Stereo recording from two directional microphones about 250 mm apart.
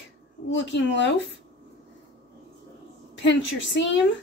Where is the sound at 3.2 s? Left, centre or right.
Left.